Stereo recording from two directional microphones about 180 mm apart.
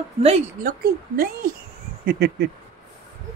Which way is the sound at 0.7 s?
55° right (ahead or behind).